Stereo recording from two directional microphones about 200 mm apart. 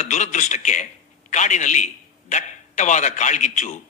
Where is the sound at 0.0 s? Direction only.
35° left (ahead or behind).